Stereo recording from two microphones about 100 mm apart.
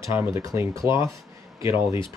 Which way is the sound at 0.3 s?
30° right (ahead or behind).